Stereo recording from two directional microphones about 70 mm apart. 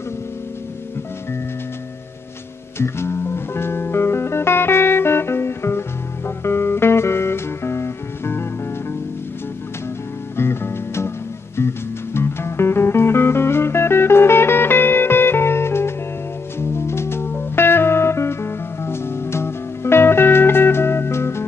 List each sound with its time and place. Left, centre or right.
2.8 s music: left
10.3 s music: left